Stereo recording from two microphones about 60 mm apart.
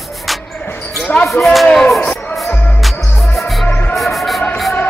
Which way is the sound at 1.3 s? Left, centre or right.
Centre.